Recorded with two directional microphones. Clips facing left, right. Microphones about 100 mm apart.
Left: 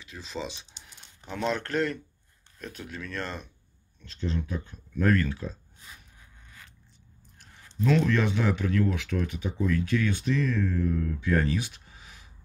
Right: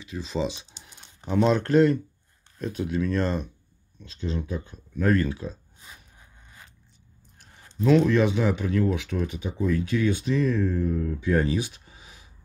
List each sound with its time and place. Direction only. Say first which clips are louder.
0.0 s speech: right 8 dB; 10° right (ahead or behind)
7.8 s speech: right 5 dB; 15° right (ahead or behind)
11.4 s a sound: right 3 dB; 20° right (ahead or behind)